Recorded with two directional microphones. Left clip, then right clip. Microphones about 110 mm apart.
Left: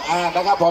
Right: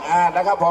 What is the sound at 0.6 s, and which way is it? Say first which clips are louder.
Speech: left 1 dB; 20° left (ahead or behind).